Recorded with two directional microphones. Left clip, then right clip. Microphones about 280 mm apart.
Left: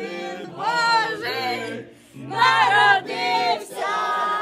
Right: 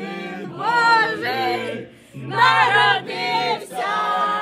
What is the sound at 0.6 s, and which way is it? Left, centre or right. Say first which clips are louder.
Child singing: right 4 dB; centre.